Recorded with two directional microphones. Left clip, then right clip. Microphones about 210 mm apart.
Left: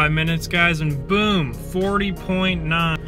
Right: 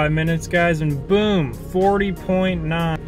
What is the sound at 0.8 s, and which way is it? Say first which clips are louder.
Speech: right 2 dB; 40° left (ahead or behind).